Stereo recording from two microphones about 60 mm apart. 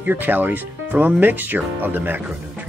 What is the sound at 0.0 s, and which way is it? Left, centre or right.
Speech, right.